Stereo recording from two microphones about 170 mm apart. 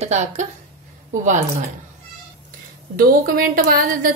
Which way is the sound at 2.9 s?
60° right (ahead or behind).